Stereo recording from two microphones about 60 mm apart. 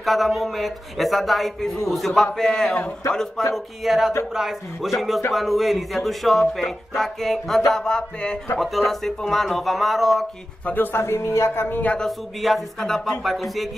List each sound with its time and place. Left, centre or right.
0.0 s a man's voice: centre
3.5 s a man's voice: centre
8.5 s a man's voice: centre
10.6 s speech: left
11.7 s speech: left
12.4 s a man's voice: centre